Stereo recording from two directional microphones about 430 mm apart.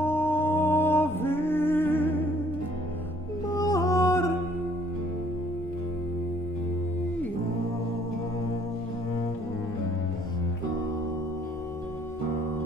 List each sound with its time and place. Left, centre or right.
0.0 s music: centre
3.4 s music: centre